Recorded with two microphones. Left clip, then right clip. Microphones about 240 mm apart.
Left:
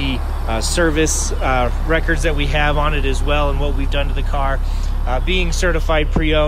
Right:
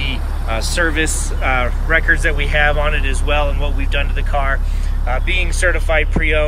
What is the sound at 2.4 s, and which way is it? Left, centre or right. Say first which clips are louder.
Speech: right 1 dB; centre.